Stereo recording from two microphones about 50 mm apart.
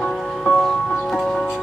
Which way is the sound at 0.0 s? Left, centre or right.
Centre.